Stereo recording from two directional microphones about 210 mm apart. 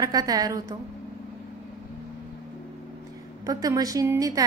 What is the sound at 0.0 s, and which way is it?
Speech, 15° right (ahead or behind).